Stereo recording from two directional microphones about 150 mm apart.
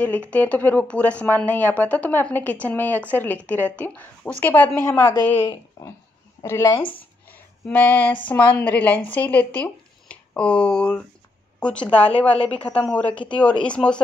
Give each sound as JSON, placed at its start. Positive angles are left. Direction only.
{"t": 0.3, "sound": "speech", "side_deg": 10}